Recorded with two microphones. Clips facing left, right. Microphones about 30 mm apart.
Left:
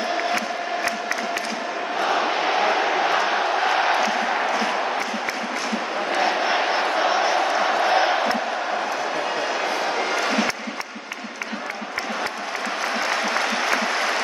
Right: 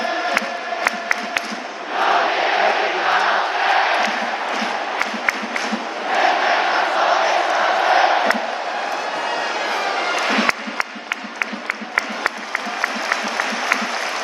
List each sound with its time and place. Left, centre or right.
2.0 s crowd: right
6.2 s vehicle: right
6.8 s crowd: right
9.8 s a sound: right